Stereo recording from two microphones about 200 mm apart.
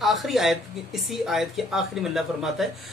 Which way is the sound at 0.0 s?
Centre (ahead or behind).